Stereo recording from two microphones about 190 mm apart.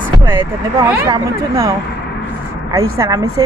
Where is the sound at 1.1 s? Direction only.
15° right (ahead or behind).